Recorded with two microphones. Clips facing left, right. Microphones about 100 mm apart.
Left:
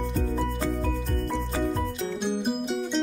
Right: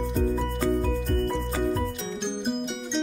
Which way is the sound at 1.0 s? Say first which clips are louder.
Right 3 dB; centre (ahead or behind).